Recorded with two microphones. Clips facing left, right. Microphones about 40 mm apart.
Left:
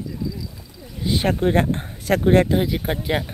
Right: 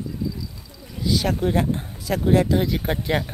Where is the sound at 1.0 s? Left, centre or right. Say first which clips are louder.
Left 2 dB; left.